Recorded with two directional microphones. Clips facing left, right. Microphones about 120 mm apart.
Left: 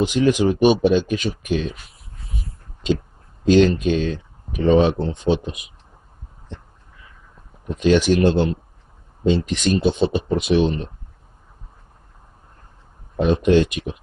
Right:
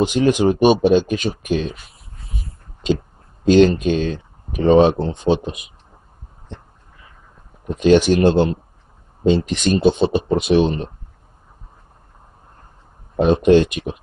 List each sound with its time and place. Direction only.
0.2 s speech: 50° right (ahead or behind)
0.8 s speech: 40° right (ahead or behind)
3.4 s speech: 45° right (ahead or behind)
4.9 s speech: 30° right (ahead or behind)
7.7 s speech: 50° right (ahead or behind)
9.5 s speech: 55° right (ahead or behind)
9.9 s speech: 25° right (ahead or behind)
10.5 s speech: 40° right (ahead or behind)
13.2 s speech: 45° right (ahead or behind)